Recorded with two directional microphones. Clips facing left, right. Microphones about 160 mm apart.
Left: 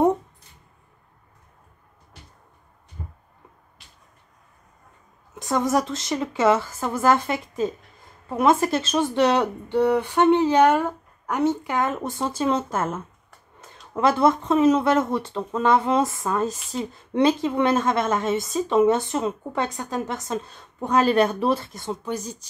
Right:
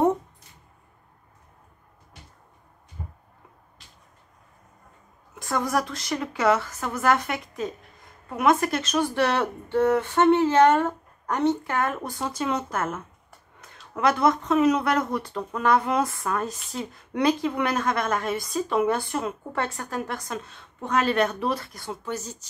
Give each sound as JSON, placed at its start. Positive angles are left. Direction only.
{"t": 5.4, "sound": "speech", "side_deg": 20}